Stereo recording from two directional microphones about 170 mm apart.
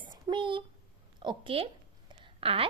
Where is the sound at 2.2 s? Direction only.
35° right (ahead or behind).